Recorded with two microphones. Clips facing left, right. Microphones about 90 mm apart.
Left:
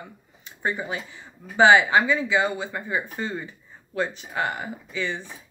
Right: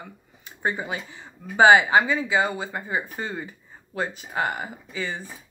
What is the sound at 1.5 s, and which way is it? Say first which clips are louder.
Speech: right 1 dB; 20° right (ahead or behind).